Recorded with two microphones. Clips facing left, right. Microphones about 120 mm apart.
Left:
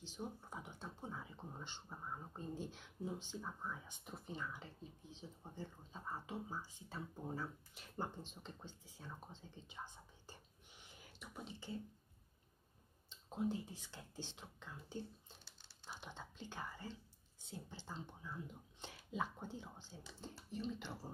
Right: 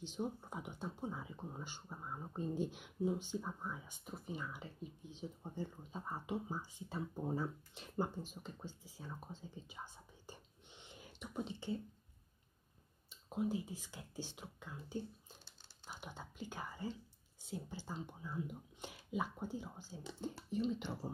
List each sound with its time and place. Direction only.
0.0 s speech: 20° right (ahead or behind)
2.3 s speech: 20° right (ahead or behind)
8.0 s speech: 5° right (ahead or behind)
10.3 s whispering: 25° right (ahead or behind)
13.1 s speech: 10° right (ahead or behind)